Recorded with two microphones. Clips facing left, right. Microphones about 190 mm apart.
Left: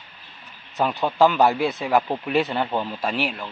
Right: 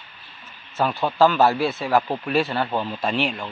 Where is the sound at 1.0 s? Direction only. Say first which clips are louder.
Even; 15° left (ahead or behind).